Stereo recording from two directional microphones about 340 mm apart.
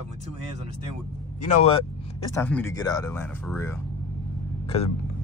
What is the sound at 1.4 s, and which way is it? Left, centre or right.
Speech, left.